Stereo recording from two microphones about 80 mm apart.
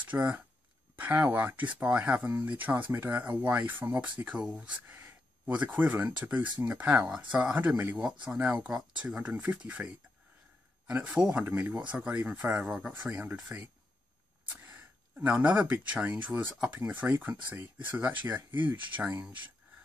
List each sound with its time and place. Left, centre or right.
0.0 s speech: right
14.6 s speech: right